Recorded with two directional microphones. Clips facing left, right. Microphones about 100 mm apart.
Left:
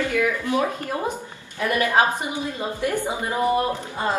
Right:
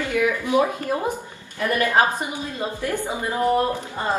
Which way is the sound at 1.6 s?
15° left (ahead or behind).